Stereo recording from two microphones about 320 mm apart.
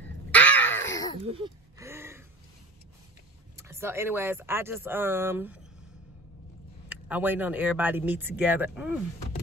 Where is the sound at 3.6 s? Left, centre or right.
Centre.